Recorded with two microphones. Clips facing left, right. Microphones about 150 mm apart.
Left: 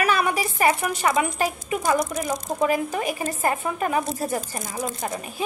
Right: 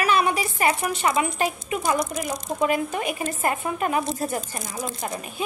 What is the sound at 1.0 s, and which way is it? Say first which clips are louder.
Speech: left 1 dB; 35° left (ahead or behind).